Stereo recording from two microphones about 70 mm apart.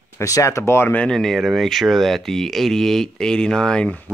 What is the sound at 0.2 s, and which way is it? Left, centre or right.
Speech, left.